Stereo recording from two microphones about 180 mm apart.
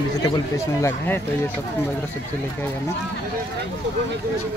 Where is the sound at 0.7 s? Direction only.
15° left (ahead or behind).